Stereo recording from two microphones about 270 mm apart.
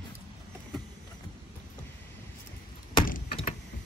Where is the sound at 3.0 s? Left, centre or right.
Left.